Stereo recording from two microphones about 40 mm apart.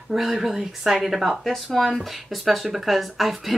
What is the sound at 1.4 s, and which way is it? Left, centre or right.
Speech, centre.